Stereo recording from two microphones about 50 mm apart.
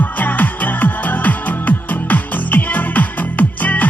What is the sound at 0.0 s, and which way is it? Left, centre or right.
Music, left.